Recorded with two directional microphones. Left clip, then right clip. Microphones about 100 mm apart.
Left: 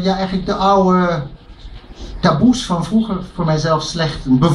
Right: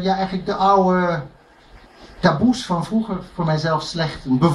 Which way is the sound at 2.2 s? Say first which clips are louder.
Left 3 dB; 35° right (ahead or behind).